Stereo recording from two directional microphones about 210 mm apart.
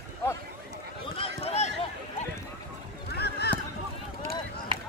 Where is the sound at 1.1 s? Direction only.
30° left (ahead or behind).